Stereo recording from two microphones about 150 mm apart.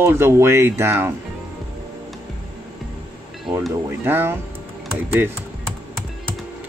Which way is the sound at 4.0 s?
15° right (ahead or behind).